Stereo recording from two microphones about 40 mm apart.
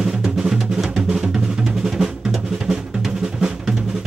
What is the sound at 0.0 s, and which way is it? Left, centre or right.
Music, centre.